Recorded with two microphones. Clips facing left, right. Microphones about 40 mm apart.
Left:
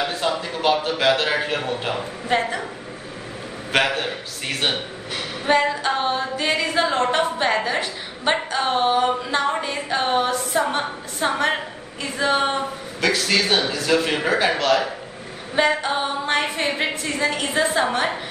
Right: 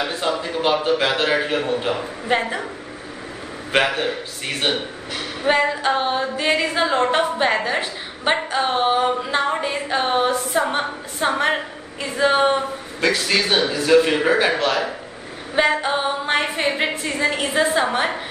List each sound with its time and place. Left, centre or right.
0.0 s a sound: centre
0.8 s a man's voice: centre
3.7 s a man's voice: centre
5.4 s a woman's voice: centre
13.0 s a man's voice: right; by 18.2 s centre